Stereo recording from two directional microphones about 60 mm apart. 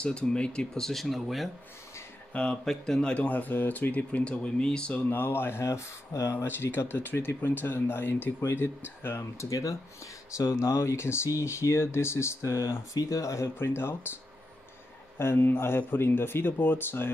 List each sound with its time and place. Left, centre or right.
0.0 s speech: centre
2.3 s speech: centre
5.1 s speech: left
5.6 s speech: left
6.4 s speech: left
9.4 s speech: left
11.2 s speech: left
12.9 s speech: left
13.6 s speech: left
15.1 s speech: left